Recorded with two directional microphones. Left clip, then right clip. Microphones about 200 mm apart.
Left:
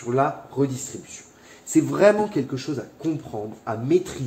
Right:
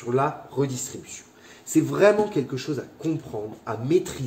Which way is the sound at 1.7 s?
40° left (ahead or behind).